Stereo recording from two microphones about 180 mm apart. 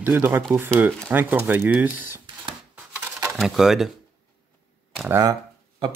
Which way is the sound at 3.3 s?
Centre (ahead or behind).